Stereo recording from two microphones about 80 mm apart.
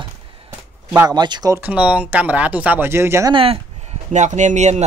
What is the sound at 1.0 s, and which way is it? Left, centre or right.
Speech, right.